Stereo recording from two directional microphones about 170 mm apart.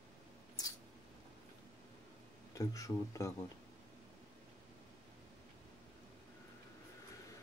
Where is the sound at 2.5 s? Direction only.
20° left (ahead or behind).